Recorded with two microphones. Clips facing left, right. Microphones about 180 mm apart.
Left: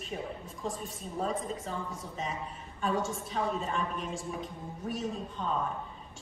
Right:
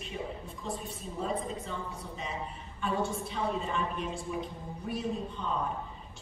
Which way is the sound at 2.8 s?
45° left (ahead or behind).